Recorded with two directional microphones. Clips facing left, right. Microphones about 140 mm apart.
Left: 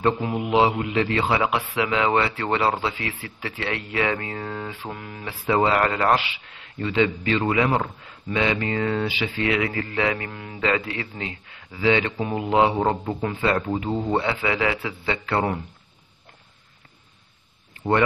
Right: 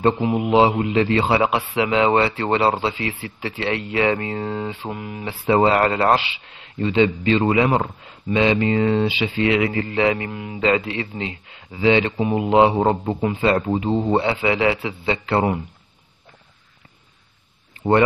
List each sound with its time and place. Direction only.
0.2 s speech: 20° right (ahead or behind)
5.5 s speech: 30° right (ahead or behind)